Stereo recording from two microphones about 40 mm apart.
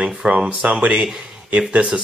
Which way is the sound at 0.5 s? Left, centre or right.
Right.